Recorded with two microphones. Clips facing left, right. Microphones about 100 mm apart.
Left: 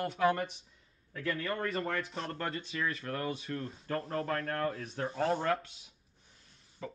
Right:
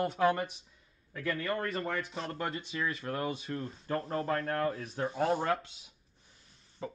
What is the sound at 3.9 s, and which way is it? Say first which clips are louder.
Speech: right 1 dB; centre (ahead or behind).